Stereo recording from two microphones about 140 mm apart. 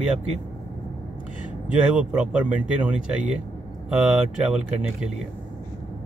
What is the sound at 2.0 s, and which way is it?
Speech, 5° right (ahead or behind).